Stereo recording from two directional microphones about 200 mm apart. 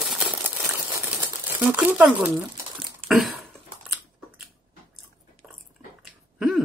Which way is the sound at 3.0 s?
30° right (ahead or behind).